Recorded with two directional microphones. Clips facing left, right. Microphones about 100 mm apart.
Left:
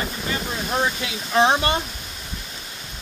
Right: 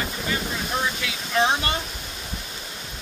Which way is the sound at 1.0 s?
25° left (ahead or behind).